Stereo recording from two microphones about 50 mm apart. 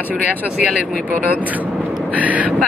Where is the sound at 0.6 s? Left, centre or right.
Right.